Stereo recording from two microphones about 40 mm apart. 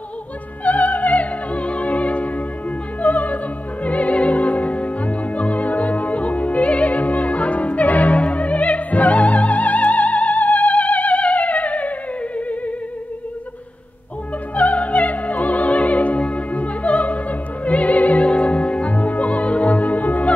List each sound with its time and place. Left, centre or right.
0.7 s music: left
3.0 s opera: left
3.8 s music: left
14.5 s opera: left